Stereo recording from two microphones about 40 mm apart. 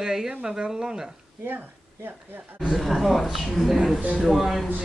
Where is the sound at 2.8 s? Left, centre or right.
Centre.